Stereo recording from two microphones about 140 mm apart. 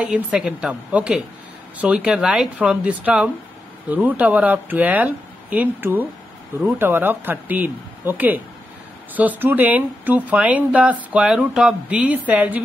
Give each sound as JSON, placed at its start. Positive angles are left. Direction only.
{"t": 0.0, "sound": "speech", "side_deg": -5}